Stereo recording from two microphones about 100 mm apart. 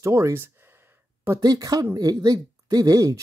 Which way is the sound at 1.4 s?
40° right (ahead or behind).